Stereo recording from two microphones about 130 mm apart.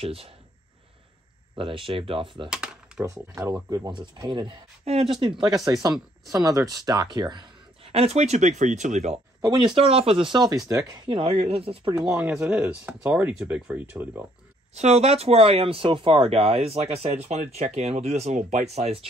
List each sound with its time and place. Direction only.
0.0 s speech: 50° right (ahead or behind)
1.5 s speech: 40° right (ahead or behind)
3.0 s speech: 25° right (ahead or behind); by 5.1 s 50° right (ahead or behind)
5.2 s speech: 40° right (ahead or behind)
7.9 s speech: 55° right (ahead or behind)
9.8 s speech: 45° right (ahead or behind)
12.1 s speech: 10° right (ahead or behind)
14.7 s speech: 55° right (ahead or behind)